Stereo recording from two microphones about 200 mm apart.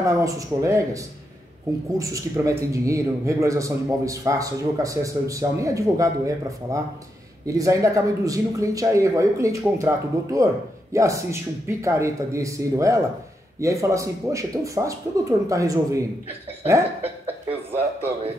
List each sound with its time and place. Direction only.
0.0 s speech: 15° right (ahead or behind)